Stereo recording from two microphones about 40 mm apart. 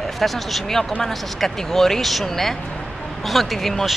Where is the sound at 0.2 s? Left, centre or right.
Centre.